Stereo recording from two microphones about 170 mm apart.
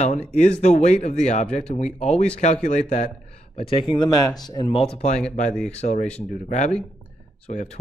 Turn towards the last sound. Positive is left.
turn(degrees=40)  # may be behind; listen again after turning